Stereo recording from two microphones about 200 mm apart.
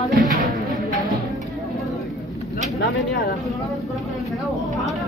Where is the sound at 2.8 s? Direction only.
55° left (ahead or behind).